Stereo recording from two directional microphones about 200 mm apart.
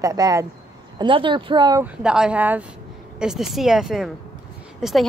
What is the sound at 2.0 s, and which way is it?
A woman's voice, 5° right (ahead or behind).